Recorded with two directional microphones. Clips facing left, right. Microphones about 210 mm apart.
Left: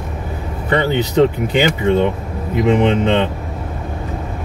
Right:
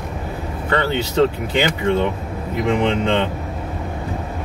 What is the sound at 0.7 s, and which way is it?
Speech, 15° left (ahead or behind).